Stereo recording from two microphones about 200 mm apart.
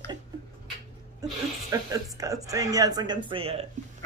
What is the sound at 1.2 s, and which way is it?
Speech, 15° right (ahead or behind).